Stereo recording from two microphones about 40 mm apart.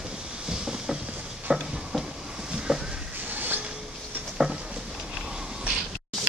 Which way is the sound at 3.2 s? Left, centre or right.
Right.